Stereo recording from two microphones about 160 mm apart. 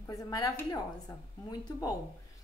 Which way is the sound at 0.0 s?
20° left (ahead or behind).